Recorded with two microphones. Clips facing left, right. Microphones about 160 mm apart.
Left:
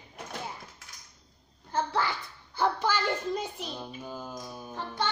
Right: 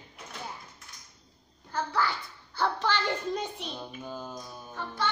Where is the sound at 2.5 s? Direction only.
15° left (ahead or behind).